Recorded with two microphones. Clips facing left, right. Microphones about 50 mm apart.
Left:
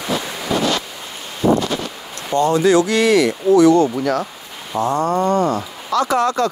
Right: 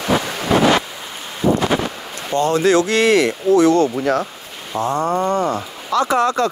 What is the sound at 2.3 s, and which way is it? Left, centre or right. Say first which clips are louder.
Speech: left 1 dB; right.